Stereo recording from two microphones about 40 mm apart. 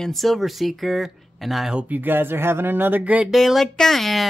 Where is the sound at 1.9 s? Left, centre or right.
Right.